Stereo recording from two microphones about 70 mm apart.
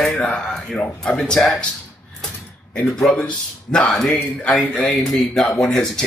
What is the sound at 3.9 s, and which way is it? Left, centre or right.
Speech, centre.